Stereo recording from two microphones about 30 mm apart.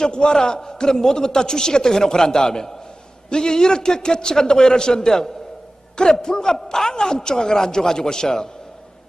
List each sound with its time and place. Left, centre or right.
0.0 s a man's voice: left